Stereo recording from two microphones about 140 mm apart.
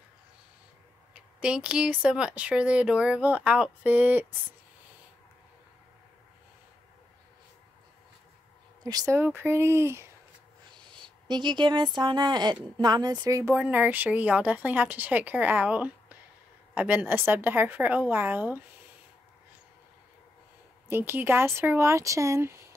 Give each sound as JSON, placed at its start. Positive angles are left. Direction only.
{"t": 1.1, "sound": "speech", "side_deg": -5}
{"t": 8.8, "sound": "speech", "side_deg": -25}
{"t": 10.9, "sound": "speech", "side_deg": -35}
{"t": 20.9, "sound": "speech", "side_deg": -15}